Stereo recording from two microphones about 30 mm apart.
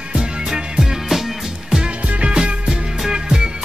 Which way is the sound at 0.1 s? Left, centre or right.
Right.